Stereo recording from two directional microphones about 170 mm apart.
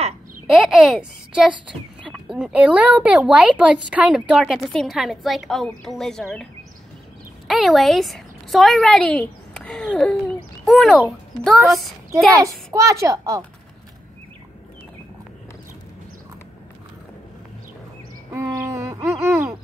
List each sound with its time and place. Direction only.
0.6 s speech: 5° right (ahead or behind)
7.4 s a woman's voice: centre (ahead or behind)
12.4 s a child's voice: 20° right (ahead or behind)
18.3 s a sound: 15° right (ahead or behind)